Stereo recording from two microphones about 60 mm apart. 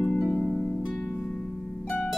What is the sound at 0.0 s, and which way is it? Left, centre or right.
Harp, centre.